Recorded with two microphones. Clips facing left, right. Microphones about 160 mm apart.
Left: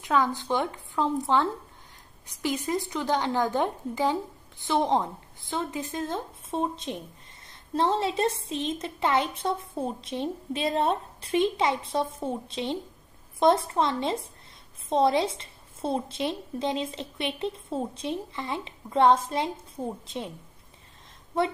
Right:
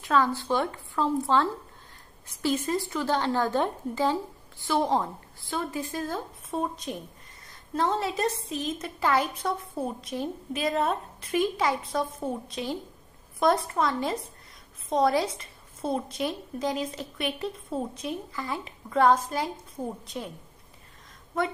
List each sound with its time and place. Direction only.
0.0 s a woman's voice: 15° left (ahead or behind)
19.8 s a woman's voice: centre (ahead or behind)